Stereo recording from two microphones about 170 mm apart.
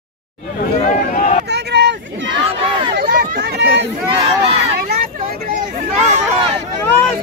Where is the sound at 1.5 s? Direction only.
90° right.